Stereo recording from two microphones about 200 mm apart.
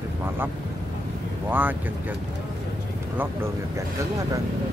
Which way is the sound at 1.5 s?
10° right (ahead or behind).